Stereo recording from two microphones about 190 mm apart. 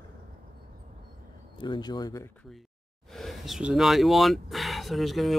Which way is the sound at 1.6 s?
25° left (ahead or behind).